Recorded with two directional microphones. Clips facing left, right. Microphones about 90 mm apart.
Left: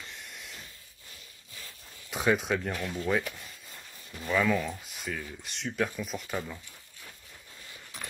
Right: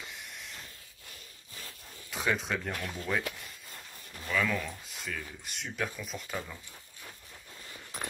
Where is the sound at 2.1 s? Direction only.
20° left (ahead or behind).